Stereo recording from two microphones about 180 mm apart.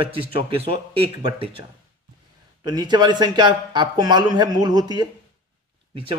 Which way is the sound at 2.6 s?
25° right (ahead or behind).